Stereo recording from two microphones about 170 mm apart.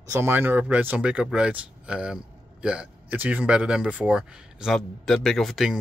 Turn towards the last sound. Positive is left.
turn(degrees=0)  # may be behind; listen again after turning